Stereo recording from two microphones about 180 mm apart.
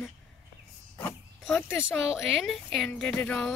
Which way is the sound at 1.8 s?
Centre (ahead or behind).